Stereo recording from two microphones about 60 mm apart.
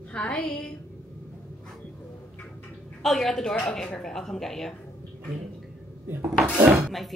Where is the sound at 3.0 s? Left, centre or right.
Centre.